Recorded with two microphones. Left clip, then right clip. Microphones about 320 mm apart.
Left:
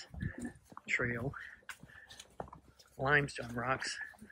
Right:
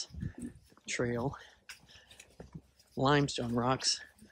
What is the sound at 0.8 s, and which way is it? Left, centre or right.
Speech, centre.